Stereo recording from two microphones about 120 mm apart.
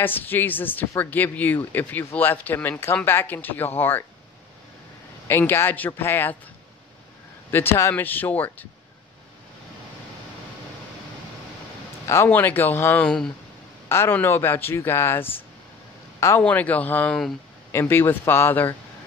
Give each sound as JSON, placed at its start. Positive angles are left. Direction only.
{"t": 0.0, "sound": "speech", "side_deg": 15}
{"t": 5.3, "sound": "a man's voice", "side_deg": 20}
{"t": 7.5, "sound": "speech", "side_deg": 20}
{"t": 12.1, "sound": "speech", "side_deg": 20}
{"t": 13.8, "sound": "a man's voice", "side_deg": 20}
{"t": 16.4, "sound": "speech", "side_deg": 10}
{"t": 17.6, "sound": "a man's voice", "side_deg": 20}